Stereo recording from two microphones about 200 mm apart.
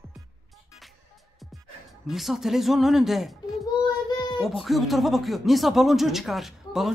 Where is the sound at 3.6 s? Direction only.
20° left (ahead or behind).